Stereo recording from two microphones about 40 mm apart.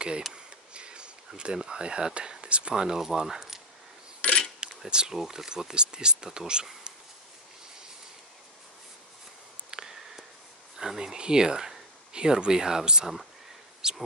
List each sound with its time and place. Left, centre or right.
0.3 s speech: right
4.2 s cutlery: left
4.6 s cutlery: right
5.2 s speech: centre
9.7 s a sound: centre
10.8 s speech: centre